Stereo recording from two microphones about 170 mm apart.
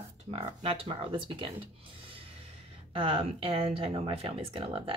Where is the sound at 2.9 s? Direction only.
30° right (ahead or behind).